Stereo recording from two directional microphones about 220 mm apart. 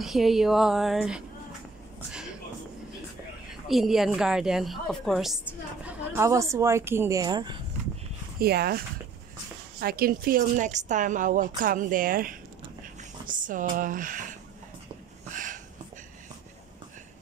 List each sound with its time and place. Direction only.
0.0 s a woman's voice: centre (ahead or behind)
3.6 s a woman's voice: centre (ahead or behind); by 7.6 s 20° right (ahead or behind)
8.4 s speech: 45° right (ahead or behind)
13.5 s speech: 35° right (ahead or behind)
15.3 s a sound: 35° right (ahead or behind)